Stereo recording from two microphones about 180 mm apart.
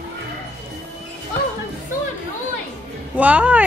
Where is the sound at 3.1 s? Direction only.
10° right (ahead or behind).